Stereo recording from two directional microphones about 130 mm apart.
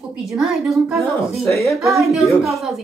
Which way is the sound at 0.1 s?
Centre (ahead or behind).